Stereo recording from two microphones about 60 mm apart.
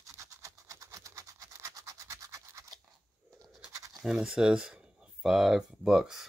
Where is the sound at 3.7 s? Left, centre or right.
Right.